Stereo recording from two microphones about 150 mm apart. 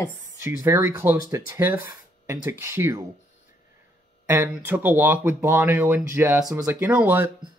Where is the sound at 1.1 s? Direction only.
25° right (ahead or behind).